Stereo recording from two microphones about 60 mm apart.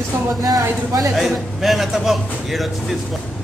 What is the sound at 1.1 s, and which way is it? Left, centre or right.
A man's voice, centre.